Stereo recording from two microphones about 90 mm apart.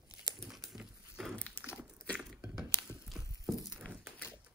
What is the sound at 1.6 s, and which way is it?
Crumpling, 20° left (ahead or behind).